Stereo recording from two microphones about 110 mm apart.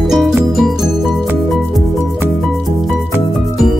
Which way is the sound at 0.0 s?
5° right (ahead or behind).